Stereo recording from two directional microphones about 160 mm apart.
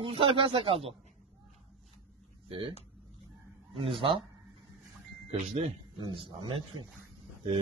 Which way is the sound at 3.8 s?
35° right (ahead or behind).